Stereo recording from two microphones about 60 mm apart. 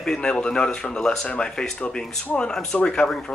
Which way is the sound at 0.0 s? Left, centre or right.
Centre.